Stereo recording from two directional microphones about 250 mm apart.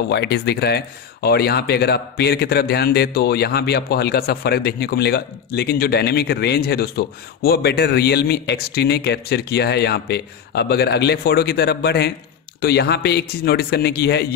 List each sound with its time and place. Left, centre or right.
0.1 s speech: left